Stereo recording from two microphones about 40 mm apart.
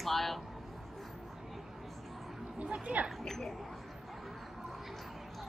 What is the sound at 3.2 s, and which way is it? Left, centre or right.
Speech, centre.